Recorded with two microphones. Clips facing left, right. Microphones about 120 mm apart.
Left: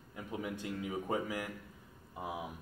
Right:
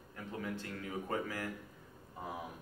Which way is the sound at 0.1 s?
15° left (ahead or behind).